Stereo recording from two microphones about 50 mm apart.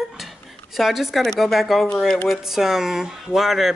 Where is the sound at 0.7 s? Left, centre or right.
Centre.